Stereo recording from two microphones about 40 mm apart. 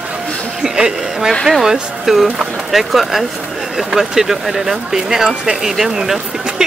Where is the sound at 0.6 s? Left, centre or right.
Centre.